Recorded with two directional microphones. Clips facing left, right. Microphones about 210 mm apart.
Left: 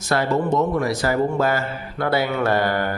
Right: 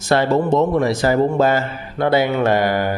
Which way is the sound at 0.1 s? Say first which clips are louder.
Right 4 dB; 30° right (ahead or behind).